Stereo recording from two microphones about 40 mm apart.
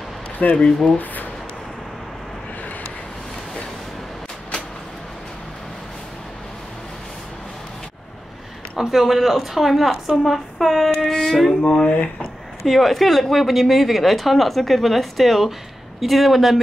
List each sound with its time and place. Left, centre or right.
0.6 s speech: centre
0.9 s a sound: left
8.7 s a woman's voice: centre
11.6 s speech: left
12.6 s a woman's voice: centre